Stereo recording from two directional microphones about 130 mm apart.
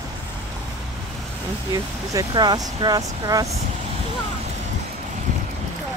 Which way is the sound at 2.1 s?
30° right (ahead or behind).